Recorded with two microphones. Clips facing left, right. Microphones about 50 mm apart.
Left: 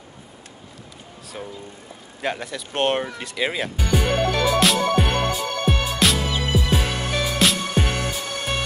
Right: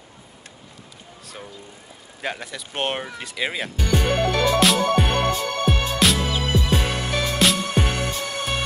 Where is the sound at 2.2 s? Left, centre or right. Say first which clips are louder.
Left 3 dB; centre.